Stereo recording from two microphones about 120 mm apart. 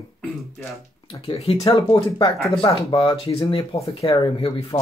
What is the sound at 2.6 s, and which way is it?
Speech, 45° left (ahead or behind).